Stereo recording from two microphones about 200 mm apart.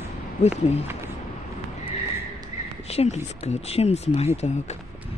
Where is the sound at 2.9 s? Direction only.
35° left (ahead or behind).